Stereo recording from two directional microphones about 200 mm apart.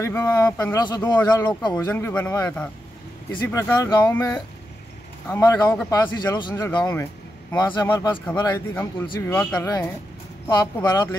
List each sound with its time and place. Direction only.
0.0 s speech: 15° left (ahead or behind)
10.5 s speech: 20° left (ahead or behind)